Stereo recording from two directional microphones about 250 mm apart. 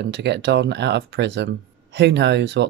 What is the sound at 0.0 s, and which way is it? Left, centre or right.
Speech, right.